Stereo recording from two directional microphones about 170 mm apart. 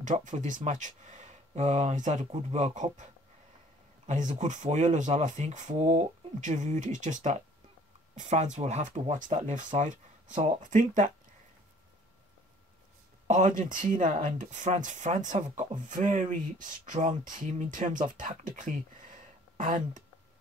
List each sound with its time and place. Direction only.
0.0 s speech: 50° right (ahead or behind)
4.1 s speech: 45° right (ahead or behind)
13.3 s speech: 50° right (ahead or behind)